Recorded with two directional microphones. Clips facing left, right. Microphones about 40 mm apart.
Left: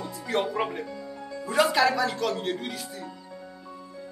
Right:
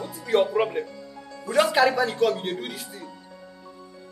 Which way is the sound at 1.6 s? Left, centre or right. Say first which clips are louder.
Right 2 dB; centre.